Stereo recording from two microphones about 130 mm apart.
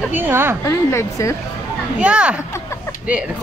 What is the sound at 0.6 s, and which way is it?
Speech, 20° left (ahead or behind).